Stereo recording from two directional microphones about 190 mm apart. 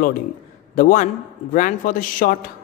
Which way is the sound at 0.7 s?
45° left (ahead or behind).